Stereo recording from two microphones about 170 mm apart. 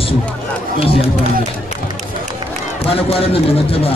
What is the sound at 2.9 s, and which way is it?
A man's voice, 35° left (ahead or behind).